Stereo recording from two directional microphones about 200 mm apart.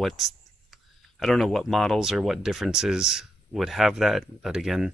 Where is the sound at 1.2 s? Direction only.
Centre (ahead or behind).